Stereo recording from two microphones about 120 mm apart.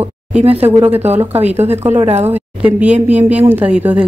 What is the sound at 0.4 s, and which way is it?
Speech, 55° right (ahead or behind).